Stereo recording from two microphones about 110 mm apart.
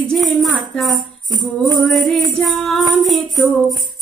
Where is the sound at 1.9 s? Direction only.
Centre (ahead or behind).